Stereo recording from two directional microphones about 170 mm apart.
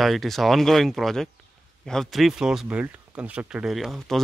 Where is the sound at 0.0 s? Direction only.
Centre (ahead or behind).